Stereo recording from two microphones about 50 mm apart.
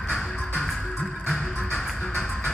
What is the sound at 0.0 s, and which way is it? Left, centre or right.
Music, centre.